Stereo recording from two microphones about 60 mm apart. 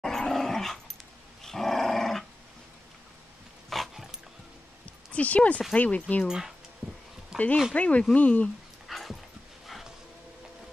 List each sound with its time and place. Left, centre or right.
0.0 s dog: centre
3.7 s dog: centre
5.1 s speech: left
6.2 s speech: centre
7.3 s a sound: centre
7.7 s speech: left
8.8 s dog: centre
9.7 s music: centre